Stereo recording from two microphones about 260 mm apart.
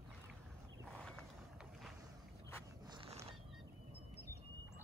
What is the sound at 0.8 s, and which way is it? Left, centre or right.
Boat, centre.